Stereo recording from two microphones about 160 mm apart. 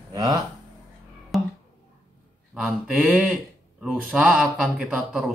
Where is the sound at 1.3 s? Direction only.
Centre (ahead or behind).